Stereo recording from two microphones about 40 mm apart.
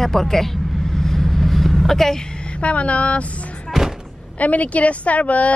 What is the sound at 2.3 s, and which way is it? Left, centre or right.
Speech, left.